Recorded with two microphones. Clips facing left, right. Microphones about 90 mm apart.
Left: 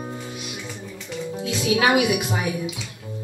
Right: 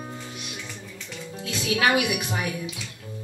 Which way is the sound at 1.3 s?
15° left (ahead or behind).